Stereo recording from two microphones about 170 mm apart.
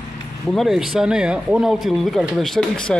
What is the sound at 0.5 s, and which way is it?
Speech, centre (ahead or behind).